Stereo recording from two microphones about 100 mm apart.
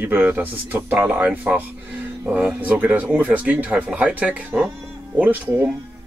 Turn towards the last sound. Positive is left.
turn(degrees=-15)  # may be behind; listen again after turning